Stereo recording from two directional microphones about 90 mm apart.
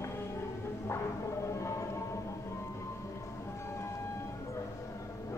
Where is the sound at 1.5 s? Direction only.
35° left (ahead or behind).